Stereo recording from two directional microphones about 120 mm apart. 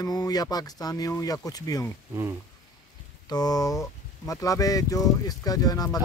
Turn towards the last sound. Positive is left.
turn(degrees=30)  # may be behind; listen again after turning